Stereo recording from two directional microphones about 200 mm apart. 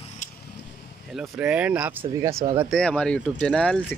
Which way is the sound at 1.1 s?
5° right (ahead or behind).